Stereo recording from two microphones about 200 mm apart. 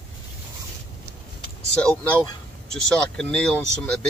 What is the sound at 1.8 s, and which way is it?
Speech, 5° left (ahead or behind).